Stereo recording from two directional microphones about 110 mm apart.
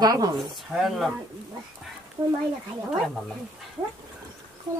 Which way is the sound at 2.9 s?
5° right (ahead or behind).